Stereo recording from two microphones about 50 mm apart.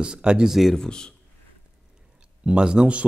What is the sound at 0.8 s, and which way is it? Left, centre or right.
Speech, centre.